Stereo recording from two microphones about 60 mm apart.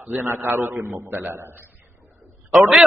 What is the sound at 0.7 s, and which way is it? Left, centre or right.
Speech, right.